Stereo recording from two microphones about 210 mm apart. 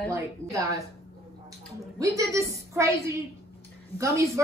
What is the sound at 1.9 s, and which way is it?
A woman's voice, 15° right (ahead or behind).